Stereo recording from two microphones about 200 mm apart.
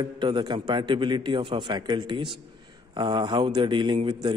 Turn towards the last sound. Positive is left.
turn(degrees=-25)  # may be behind; listen again after turning